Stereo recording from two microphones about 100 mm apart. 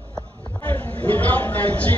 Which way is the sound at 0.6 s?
20° left (ahead or behind).